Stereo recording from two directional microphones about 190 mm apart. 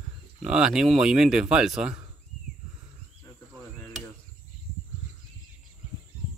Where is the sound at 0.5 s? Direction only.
5° right (ahead or behind).